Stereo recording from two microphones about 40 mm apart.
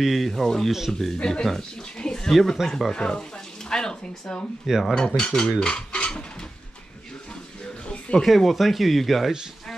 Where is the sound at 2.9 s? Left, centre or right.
Centre.